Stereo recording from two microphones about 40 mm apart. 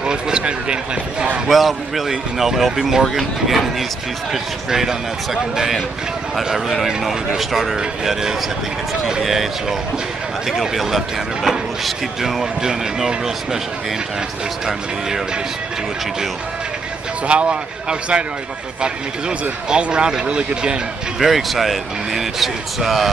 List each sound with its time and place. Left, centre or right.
0.0 s speech: right
1.5 s speech: centre
12.6 s speech: centre
14.7 s speech: centre
17.3 s speech: right
19.7 s speech: right
21.2 s speech: centre